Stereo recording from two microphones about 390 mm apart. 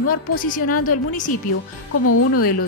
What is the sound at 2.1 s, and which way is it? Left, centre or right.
Speech, left.